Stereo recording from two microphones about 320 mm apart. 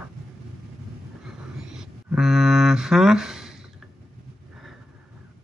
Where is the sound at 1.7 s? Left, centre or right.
Centre.